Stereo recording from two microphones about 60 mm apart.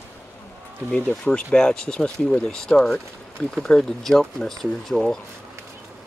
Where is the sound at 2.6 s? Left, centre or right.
Centre.